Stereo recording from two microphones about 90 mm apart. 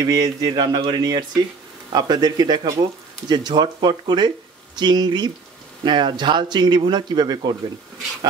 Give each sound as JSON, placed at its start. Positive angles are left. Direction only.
{"t": 0.0, "sound": "a man's voice", "side_deg": -40}